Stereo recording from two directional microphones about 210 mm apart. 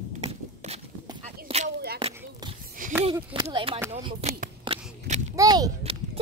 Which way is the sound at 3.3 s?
25° right (ahead or behind).